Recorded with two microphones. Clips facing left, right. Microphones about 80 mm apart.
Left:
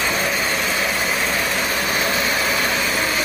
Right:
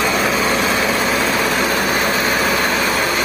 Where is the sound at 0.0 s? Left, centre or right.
Right.